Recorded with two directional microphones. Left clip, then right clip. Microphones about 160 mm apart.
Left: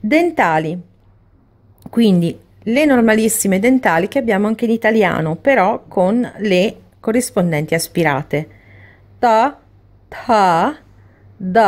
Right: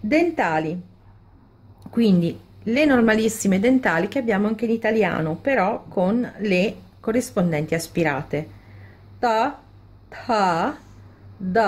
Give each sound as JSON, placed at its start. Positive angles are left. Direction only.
{"t": 0.1, "sound": "a woman's voice", "side_deg": 50}
{"t": 1.8, "sound": "a woman's voice", "side_deg": 45}